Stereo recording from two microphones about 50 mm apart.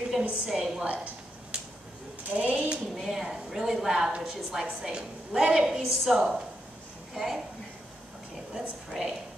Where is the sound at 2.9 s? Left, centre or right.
Centre.